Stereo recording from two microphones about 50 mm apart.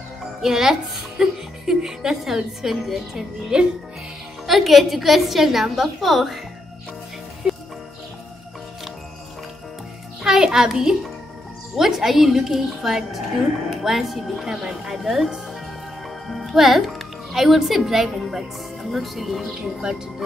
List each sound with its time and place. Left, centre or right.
0.4 s a woman's voice: centre
7.4 s music: centre
10.2 s a child's voice: centre